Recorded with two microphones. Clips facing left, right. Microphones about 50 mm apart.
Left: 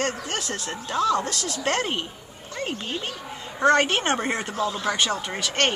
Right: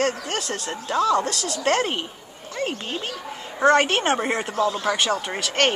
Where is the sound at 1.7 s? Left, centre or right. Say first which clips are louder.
Right 4 dB; centre.